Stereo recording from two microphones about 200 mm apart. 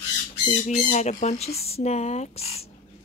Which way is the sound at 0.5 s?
35° left (ahead or behind).